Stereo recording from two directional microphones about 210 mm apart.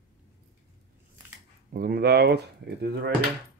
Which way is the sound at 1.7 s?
45° right (ahead or behind).